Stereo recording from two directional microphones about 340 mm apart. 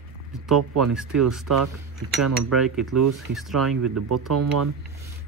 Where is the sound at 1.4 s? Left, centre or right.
Right.